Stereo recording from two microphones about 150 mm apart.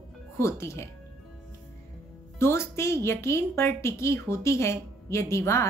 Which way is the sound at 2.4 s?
15° left (ahead or behind).